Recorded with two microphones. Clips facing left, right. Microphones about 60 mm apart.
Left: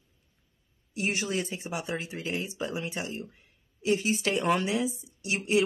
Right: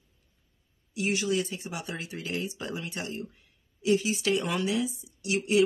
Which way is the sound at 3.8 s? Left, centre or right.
Left.